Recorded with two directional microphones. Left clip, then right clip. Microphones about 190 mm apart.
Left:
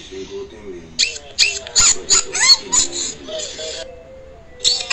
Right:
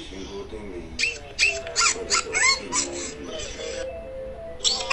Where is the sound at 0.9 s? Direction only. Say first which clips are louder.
Left 7 dB; 5° left (ahead or behind).